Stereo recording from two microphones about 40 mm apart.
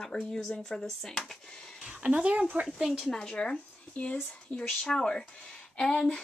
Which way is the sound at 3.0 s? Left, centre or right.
Centre.